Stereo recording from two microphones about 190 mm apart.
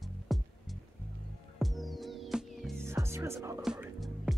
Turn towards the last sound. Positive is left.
turn(degrees=0)  # may be behind; listen again after turning